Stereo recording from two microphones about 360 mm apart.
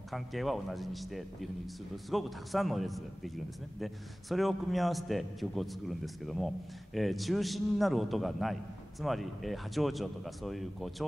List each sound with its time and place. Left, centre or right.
0.1 s a man's voice: centre